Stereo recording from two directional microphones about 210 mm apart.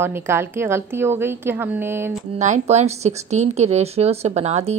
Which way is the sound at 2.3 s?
35° right (ahead or behind).